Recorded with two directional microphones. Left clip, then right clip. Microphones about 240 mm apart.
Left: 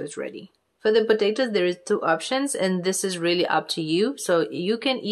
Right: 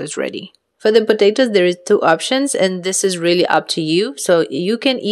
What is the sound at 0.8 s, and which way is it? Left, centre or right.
Speech, right.